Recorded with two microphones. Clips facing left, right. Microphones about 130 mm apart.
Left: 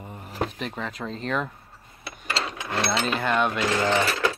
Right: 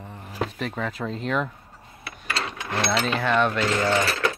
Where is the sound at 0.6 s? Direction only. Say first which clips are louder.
Right 3 dB; centre (ahead or behind).